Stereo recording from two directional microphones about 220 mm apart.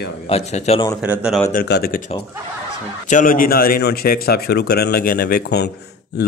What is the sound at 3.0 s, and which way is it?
A man's voice, 35° left (ahead or behind).